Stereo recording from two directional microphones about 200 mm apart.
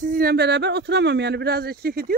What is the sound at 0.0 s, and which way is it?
Speech, 45° right (ahead or behind).